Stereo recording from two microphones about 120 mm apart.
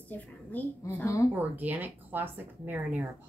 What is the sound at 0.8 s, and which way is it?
Speech, 25° left (ahead or behind).